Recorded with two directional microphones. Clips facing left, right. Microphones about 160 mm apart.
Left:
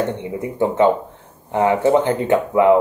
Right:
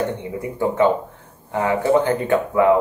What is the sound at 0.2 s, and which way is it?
Speech, 20° left (ahead or behind).